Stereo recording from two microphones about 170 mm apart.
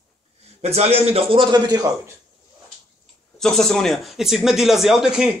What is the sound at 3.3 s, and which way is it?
Speech, centre (ahead or behind).